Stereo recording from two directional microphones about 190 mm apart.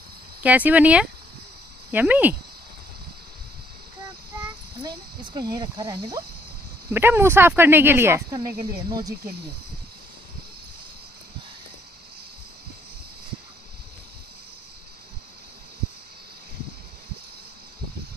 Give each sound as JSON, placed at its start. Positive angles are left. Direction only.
{"t": 0.4, "sound": "speech", "side_deg": -10}
{"t": 4.8, "sound": "speech", "side_deg": -25}